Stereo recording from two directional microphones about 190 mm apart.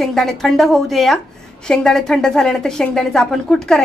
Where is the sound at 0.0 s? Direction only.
Centre (ahead or behind).